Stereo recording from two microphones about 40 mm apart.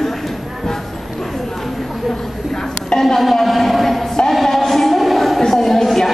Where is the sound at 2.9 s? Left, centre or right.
Centre.